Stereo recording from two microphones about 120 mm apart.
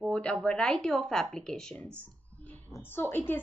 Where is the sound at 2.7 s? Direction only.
15° left (ahead or behind).